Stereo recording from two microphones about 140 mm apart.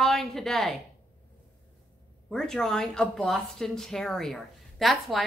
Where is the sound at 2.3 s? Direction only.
5° left (ahead or behind).